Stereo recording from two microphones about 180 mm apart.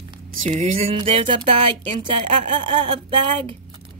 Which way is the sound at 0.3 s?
40° right (ahead or behind).